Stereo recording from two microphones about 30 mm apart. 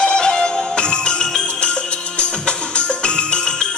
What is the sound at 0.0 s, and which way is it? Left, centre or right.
Music, left.